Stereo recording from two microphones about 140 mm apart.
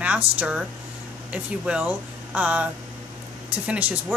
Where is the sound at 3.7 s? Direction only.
10° right (ahead or behind).